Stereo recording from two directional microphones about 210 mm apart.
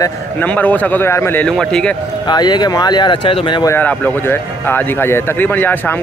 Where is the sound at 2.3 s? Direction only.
20° left (ahead or behind).